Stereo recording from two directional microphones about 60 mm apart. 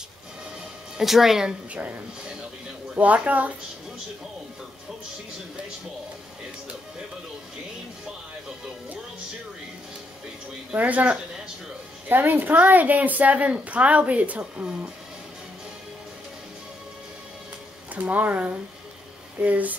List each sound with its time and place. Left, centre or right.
0.9 s speech: centre
1.7 s a woman's voice: right
3.0 s a woman's voice: right
10.7 s a woman's voice: right
17.9 s a woman's voice: right